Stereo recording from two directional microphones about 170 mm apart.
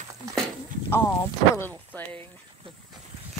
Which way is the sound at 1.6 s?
10° left (ahead or behind).